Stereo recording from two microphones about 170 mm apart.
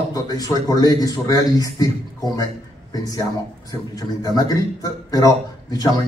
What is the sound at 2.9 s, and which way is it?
Speech, 20° left (ahead or behind).